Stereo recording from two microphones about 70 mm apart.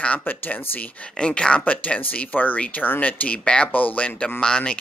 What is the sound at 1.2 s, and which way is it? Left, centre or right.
Speech, centre.